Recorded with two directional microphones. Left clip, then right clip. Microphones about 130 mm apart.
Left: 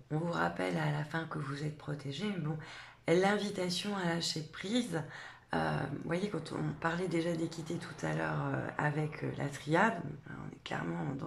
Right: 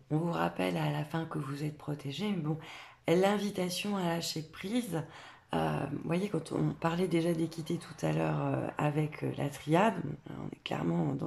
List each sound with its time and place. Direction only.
0.1 s speech: 20° right (ahead or behind)
4.6 s speech: 5° right (ahead or behind)
5.5 s speech: 10° right (ahead or behind); by 11.2 s 30° right (ahead or behind)